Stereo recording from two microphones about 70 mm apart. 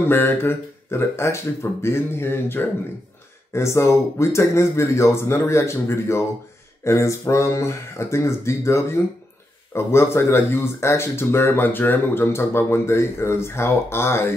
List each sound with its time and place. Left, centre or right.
0.0 s speech: left